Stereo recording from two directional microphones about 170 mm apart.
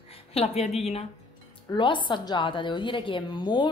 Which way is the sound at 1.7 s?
30° left (ahead or behind).